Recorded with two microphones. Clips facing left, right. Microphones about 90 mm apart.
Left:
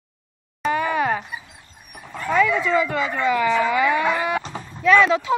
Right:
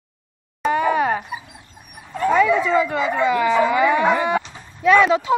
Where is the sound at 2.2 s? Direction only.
15° right (ahead or behind).